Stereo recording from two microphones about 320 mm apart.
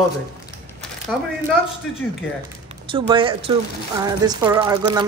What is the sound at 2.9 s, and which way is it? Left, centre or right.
A woman's voice, centre.